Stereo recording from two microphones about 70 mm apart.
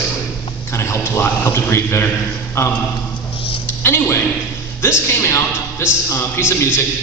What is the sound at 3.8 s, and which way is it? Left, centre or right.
A man's voice, left.